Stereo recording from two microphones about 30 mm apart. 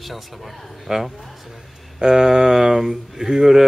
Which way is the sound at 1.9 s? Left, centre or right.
Right.